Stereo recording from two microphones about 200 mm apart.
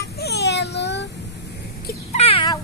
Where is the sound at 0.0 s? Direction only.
55° left (ahead or behind).